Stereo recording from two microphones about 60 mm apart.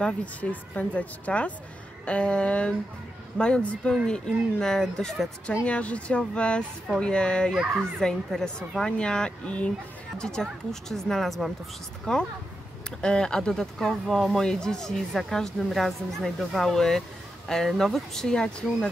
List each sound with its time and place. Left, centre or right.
0.0 s a woman's voice: left
5.7 s a woman's voice: left; by 11.5 s centre
12.1 s a woman's voice: centre
18.2 s a woman's voice: centre